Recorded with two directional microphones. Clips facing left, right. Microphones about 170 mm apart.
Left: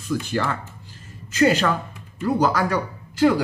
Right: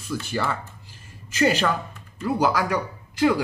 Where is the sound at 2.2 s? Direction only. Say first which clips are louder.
Left 2 dB; 10° right (ahead or behind).